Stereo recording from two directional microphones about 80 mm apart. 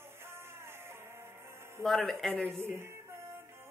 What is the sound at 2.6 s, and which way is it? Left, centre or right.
Speech, right.